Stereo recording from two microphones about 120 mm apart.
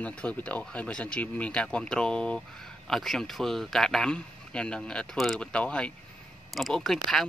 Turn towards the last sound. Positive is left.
turn(degrees=0)  # may be behind; listen again after turning